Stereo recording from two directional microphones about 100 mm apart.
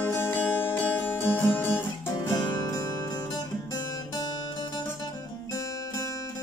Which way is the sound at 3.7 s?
40° left (ahead or behind).